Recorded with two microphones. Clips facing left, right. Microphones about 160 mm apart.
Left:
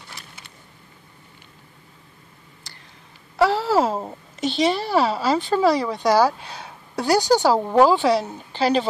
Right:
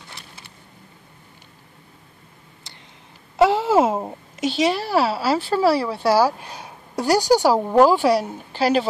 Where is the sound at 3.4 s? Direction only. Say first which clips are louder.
Right 2 dB; 20° right (ahead or behind).